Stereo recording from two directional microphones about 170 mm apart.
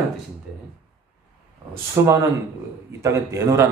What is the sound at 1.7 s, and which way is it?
Speech, 15° right (ahead or behind).